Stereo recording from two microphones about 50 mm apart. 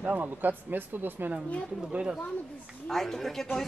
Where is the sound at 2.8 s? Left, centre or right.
Centre.